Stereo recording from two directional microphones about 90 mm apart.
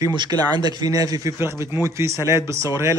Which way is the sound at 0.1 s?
55° right (ahead or behind).